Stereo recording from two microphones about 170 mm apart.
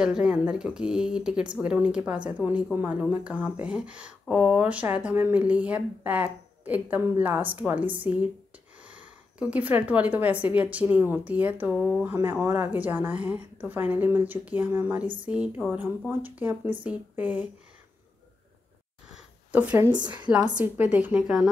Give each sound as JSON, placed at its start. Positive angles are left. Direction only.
{"t": 0.0, "sound": "speech", "side_deg": -5}
{"t": 19.1, "sound": "a sound", "side_deg": -10}
{"t": 19.9, "sound": "speech", "side_deg": -25}
{"t": 20.5, "sound": "speech", "side_deg": -10}